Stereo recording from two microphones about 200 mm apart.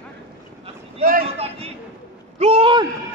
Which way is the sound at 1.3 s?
30° right (ahead or behind).